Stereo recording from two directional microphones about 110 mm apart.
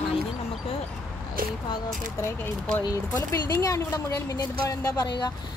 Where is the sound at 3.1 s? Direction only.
25° left (ahead or behind).